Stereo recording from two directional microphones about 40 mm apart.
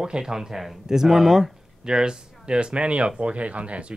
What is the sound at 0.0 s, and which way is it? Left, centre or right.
Speech, centre.